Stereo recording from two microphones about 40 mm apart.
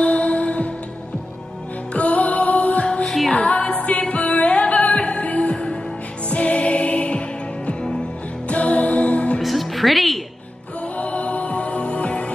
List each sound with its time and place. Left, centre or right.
0.0 s music: left
2.0 s music: left
9.4 s music: centre
11.0 s music: left